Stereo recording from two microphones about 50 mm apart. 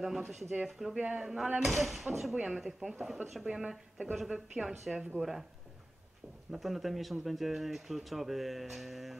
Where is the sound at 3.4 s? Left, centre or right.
Centre.